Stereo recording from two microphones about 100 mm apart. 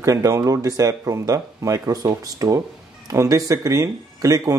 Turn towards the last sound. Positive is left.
turn(degrees=-40)  # may be behind; listen again after turning